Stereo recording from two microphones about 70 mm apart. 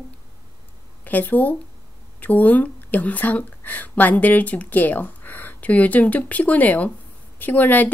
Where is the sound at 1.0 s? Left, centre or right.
Left.